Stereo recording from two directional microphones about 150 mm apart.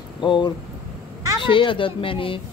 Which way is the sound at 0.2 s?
30° left (ahead or behind).